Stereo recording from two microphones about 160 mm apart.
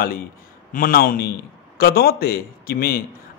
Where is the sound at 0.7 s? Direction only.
65° left (ahead or behind).